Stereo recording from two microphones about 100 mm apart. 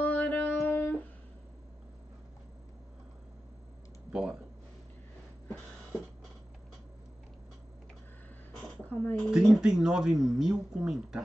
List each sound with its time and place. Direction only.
0.0 s a sound: 15° left (ahead or behind)
4.1 s speech: 5° right (ahead or behind)
8.8 s a woman's voice: 15° left (ahead or behind)
9.3 s speech: 5° right (ahead or behind)